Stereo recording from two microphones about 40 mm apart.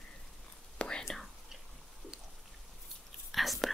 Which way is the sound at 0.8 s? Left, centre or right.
Left.